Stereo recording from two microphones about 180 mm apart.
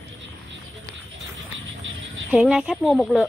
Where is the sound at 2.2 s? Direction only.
5° right (ahead or behind).